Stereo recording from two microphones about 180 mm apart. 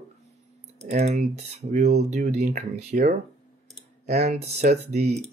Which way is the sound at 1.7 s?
40° right (ahead or behind).